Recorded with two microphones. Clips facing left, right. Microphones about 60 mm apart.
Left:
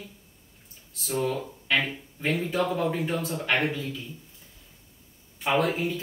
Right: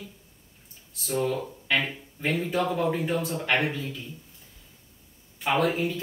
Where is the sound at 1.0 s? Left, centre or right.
Centre.